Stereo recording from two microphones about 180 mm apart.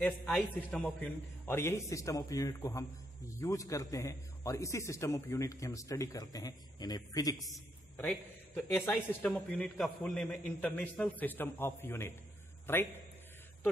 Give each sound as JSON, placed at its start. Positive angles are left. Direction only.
{"t": 0.0, "sound": "a man's voice", "side_deg": 5}
{"t": 8.0, "sound": "a man's voice", "side_deg": 10}